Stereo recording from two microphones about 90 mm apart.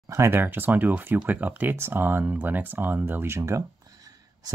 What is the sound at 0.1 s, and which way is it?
Speech, 30° right (ahead or behind).